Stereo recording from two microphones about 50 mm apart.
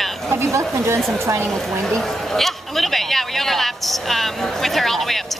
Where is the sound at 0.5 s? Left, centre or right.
Right.